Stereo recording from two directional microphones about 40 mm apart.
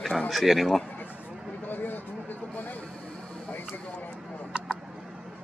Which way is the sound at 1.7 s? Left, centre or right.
Left.